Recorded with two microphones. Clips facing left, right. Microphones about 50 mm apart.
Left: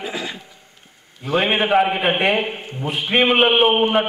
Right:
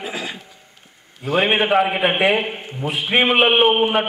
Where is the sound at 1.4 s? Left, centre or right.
Centre.